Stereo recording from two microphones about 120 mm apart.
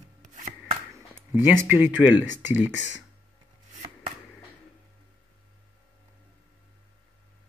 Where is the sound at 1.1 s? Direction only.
15° right (ahead or behind).